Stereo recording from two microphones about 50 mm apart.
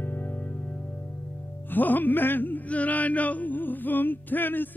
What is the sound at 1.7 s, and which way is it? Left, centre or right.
Speech, left.